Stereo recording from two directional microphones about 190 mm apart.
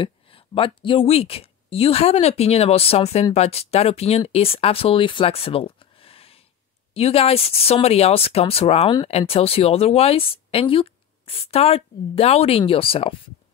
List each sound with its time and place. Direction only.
0.0 s speech: 30° left (ahead or behind)